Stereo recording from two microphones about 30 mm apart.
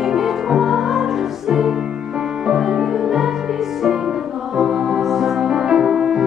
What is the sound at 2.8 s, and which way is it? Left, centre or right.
Music, centre.